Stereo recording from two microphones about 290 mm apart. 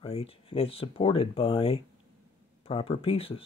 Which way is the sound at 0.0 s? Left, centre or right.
Centre.